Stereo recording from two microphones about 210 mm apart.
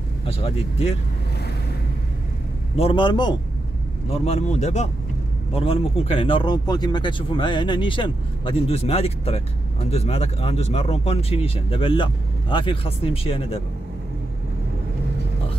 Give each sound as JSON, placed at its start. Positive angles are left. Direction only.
{"t": 0.3, "sound": "speech", "side_deg": 25}
{"t": 2.8, "sound": "speech", "side_deg": 25}